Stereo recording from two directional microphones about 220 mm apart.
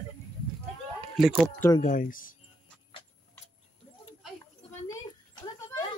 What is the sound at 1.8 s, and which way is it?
Speech, 35° left (ahead or behind).